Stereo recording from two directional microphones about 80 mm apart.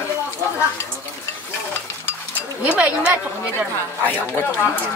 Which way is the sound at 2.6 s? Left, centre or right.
Centre.